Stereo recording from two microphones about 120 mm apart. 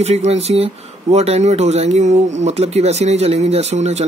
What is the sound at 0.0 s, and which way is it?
Speech, 65° right (ahead or behind).